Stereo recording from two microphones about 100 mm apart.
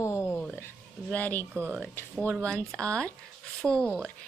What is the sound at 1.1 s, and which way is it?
Speech, 15° left (ahead or behind).